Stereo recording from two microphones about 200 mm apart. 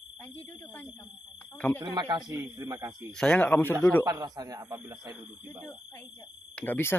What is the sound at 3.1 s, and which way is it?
Speech, 5° left (ahead or behind).